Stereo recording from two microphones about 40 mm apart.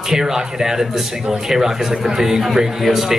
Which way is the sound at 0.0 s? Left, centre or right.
Centre.